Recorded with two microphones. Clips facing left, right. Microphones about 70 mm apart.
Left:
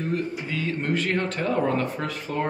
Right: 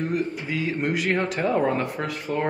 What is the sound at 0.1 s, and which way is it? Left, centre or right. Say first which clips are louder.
Speech: right 2 dB; centre.